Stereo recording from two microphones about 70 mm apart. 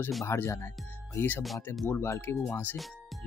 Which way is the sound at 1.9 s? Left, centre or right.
Left.